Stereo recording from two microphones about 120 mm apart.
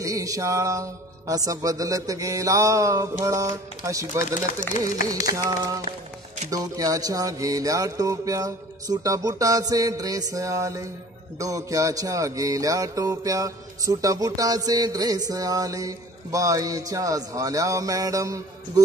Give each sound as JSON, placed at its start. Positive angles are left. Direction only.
{"t": 0.0, "sound": "music", "side_deg": -30}
{"t": 5.2, "sound": "music", "side_deg": -30}